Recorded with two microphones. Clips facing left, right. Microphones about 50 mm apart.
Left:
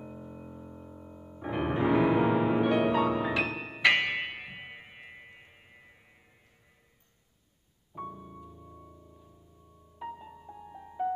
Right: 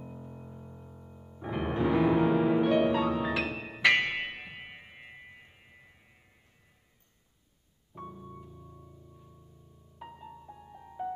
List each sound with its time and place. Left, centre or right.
0.0 s music: centre
7.9 s keyboard: centre
8.6 s music: left
9.9 s music: centre